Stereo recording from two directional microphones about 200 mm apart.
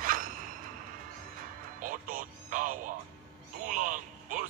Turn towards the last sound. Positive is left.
turn(degrees=-40)  # may be behind; listen again after turning